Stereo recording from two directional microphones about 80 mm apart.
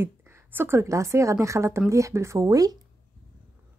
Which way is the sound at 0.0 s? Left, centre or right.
Right.